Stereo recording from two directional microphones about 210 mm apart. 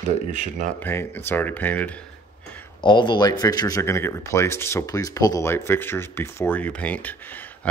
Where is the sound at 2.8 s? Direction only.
20° left (ahead or behind).